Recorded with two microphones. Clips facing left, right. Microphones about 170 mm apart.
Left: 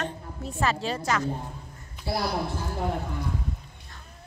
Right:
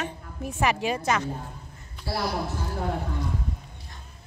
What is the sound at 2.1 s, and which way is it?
Speech, 20° left (ahead or behind).